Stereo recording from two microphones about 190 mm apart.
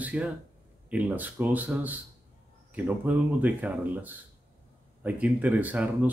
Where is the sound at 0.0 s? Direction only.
5° right (ahead or behind).